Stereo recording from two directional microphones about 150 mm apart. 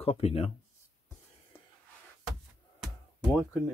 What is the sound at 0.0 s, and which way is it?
Speech, 40° left (ahead or behind).